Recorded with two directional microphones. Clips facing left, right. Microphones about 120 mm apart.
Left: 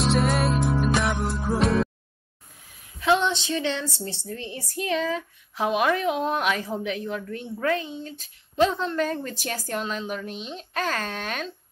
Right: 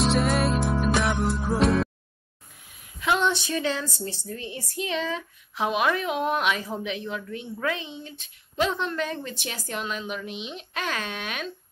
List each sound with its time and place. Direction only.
0.0 s music: centre (ahead or behind)
3.0 s speech: 25° left (ahead or behind)